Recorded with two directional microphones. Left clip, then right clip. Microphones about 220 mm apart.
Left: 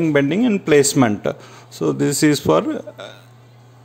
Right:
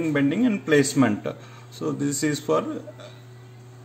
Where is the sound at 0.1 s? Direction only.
45° left (ahead or behind).